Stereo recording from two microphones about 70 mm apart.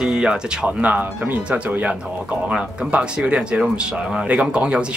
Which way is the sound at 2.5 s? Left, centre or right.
Centre.